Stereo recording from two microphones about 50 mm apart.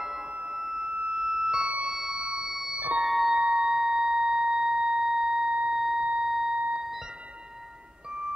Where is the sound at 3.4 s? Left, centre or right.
Centre.